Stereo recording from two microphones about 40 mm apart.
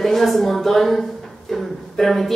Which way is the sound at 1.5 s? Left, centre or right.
Centre.